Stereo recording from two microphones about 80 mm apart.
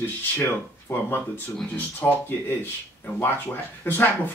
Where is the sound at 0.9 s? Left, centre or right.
Left.